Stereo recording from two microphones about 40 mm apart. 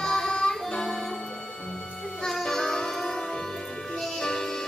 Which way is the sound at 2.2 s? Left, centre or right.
Centre.